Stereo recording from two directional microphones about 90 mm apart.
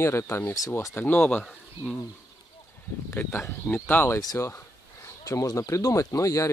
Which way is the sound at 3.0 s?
25° left (ahead or behind).